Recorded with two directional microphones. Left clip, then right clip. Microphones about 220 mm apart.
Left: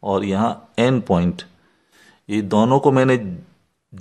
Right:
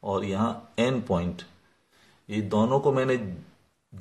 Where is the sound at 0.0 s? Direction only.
40° left (ahead or behind).